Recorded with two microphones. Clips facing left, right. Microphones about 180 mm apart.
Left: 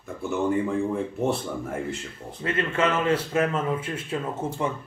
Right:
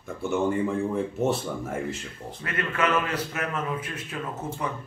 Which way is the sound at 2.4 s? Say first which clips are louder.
Left 3 dB; 25° left (ahead or behind).